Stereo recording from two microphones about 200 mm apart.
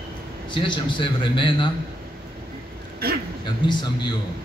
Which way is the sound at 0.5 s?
25° left (ahead or behind).